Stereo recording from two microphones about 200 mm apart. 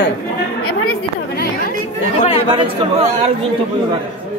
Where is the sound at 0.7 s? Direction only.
90° left.